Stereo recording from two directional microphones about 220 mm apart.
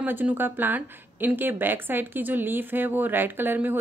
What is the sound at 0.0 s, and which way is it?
Speech, 10° right (ahead or behind).